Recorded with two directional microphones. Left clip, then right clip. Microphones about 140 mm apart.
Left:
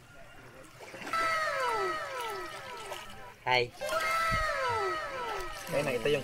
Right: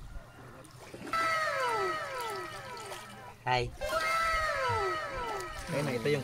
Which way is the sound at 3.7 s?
Centre (ahead or behind).